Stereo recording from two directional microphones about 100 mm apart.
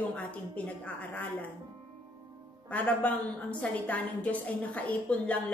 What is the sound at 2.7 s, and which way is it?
A woman's voice, 15° left (ahead or behind).